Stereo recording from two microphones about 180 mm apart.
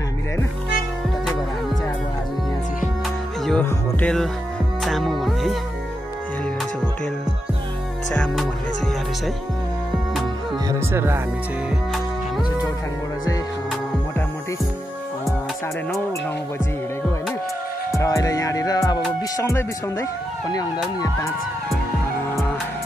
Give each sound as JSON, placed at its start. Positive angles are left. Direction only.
{"t": 3.4, "sound": "music", "side_deg": 5}
{"t": 8.1, "sound": "music", "side_deg": 5}
{"t": 10.7, "sound": "music", "side_deg": -15}
{"t": 17.9, "sound": "music", "side_deg": 20}
{"t": 19.3, "sound": "speech", "side_deg": 15}